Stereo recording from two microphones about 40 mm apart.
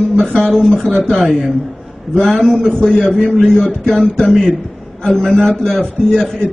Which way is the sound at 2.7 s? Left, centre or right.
Centre.